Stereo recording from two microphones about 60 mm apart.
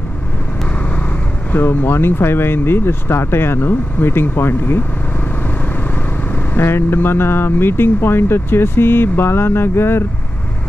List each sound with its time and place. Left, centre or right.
1.5 s speech: left
6.5 s speech: left